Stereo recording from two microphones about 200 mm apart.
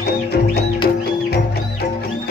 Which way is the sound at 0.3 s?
50° left (ahead or behind).